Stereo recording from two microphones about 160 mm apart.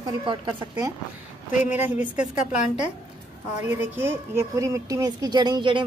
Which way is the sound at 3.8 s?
15° right (ahead or behind).